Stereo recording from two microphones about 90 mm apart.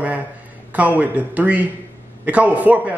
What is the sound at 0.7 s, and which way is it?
A man's voice, 15° right (ahead or behind).